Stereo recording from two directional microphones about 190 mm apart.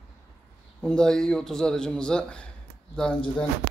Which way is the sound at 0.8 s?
5° left (ahead or behind).